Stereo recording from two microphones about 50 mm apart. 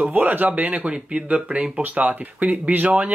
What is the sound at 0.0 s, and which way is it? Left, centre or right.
Speech, right.